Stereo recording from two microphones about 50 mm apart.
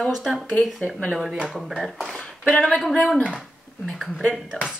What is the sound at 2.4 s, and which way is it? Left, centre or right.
Speech, left.